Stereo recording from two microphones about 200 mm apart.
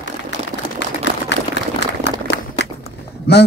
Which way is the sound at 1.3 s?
60° left (ahead or behind).